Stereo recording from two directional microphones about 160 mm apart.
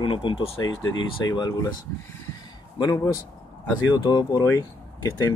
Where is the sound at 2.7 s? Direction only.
25° left (ahead or behind).